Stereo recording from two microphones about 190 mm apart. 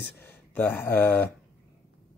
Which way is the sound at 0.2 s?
10° left (ahead or behind).